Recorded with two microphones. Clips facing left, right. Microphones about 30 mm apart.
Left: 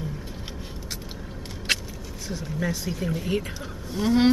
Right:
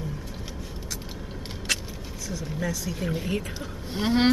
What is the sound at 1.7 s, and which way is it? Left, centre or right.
Vehicle, left.